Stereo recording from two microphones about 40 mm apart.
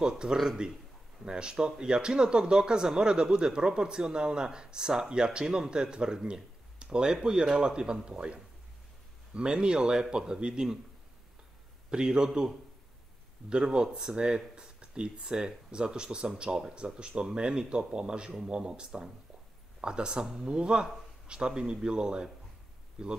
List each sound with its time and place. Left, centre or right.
0.0 s a man's voice: centre
11.9 s a man's voice: centre
13.5 s a man's voice: centre